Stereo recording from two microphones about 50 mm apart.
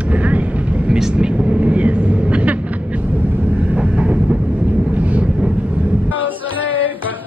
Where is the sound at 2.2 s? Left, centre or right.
Right.